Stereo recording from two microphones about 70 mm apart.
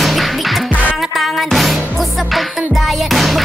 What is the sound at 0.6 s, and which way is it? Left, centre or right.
Music, left.